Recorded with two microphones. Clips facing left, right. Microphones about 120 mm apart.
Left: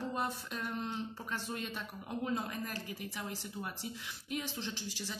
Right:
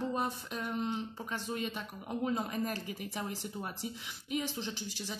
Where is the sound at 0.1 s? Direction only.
10° right (ahead or behind).